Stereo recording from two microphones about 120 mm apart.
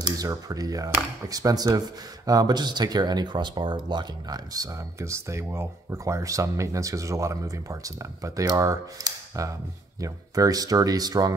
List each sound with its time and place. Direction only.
0.0 s speech: 30° right (ahead or behind)